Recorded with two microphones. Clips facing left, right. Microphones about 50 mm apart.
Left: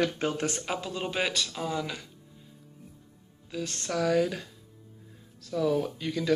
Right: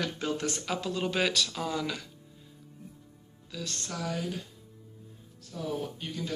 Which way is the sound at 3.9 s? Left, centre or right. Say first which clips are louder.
Left 9 dB; left.